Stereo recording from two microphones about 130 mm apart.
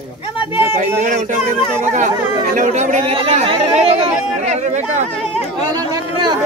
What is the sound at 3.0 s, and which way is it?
Speech, 50° right (ahead or behind).